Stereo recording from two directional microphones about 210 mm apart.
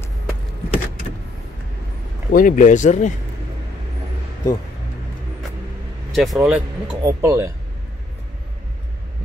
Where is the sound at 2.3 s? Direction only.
40° left (ahead or behind).